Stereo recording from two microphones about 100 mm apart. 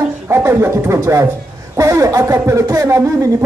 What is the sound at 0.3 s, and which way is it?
Speech, 25° right (ahead or behind).